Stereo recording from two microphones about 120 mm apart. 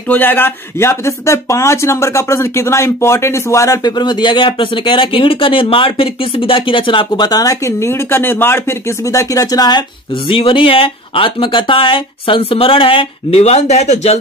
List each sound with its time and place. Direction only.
0.1 s speech: 15° left (ahead or behind); by 14.2 s 60° left (ahead or behind)